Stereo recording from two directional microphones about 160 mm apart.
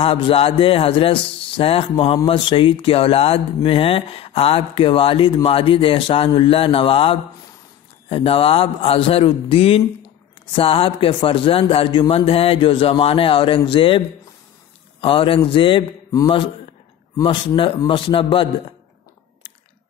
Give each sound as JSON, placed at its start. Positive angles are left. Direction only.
{"t": 0.0, "sound": "speech", "side_deg": 35}